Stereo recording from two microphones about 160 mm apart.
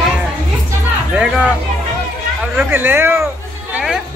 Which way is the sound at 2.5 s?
10° right (ahead or behind).